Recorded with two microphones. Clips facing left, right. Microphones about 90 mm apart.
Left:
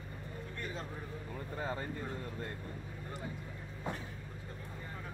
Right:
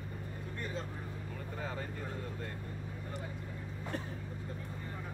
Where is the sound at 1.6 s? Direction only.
35° left (ahead or behind).